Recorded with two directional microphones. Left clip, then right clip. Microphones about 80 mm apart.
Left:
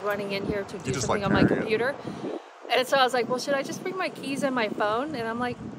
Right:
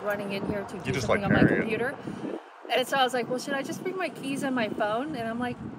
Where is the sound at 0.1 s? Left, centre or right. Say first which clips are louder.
Even; left.